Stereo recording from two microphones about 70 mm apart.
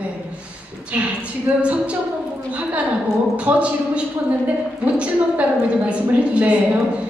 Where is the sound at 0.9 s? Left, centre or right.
Centre.